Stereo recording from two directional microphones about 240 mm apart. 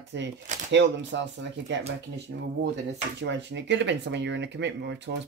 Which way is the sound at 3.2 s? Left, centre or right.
Right.